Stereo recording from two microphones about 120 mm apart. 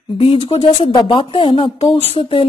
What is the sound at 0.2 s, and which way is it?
Speech, 50° left (ahead or behind).